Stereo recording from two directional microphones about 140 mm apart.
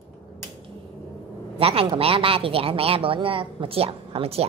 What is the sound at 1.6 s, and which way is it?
Speech, 45° right (ahead or behind).